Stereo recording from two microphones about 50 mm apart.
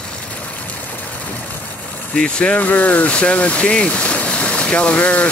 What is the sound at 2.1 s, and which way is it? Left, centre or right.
Speech, centre.